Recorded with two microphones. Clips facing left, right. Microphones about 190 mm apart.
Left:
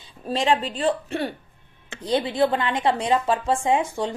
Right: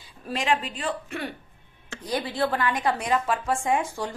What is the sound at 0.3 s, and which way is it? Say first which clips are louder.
A woman's voice: left 4 dB; 30° left (ahead or behind).